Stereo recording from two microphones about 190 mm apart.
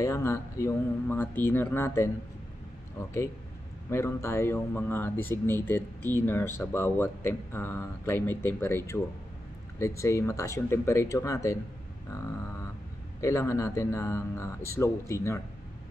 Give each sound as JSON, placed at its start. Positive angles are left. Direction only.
{"t": 0.0, "sound": "speech", "side_deg": 15}
{"t": 3.9, "sound": "speech", "side_deg": 15}
{"t": 13.2, "sound": "speech", "side_deg": 15}